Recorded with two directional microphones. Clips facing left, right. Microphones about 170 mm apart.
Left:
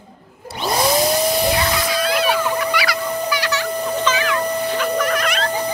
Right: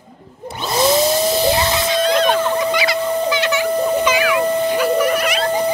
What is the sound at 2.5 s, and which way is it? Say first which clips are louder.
Fowl: right 3 dB; 20° right (ahead or behind).